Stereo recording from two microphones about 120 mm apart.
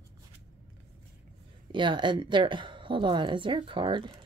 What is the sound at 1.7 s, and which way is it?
A woman's voice, 40° right (ahead or behind).